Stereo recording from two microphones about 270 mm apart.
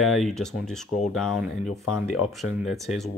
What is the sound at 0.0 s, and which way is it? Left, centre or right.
Speech, centre.